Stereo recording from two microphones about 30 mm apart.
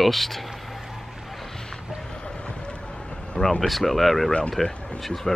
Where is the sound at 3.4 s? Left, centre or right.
Centre.